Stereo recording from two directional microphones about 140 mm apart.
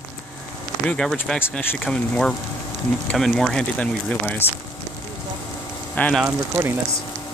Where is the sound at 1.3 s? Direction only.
15° left (ahead or behind).